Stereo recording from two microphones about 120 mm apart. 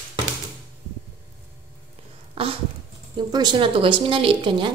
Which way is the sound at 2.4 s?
50° right (ahead or behind).